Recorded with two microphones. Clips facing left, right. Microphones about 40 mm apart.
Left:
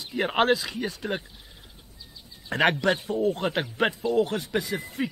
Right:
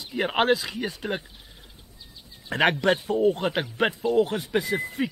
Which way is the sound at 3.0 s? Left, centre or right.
Right.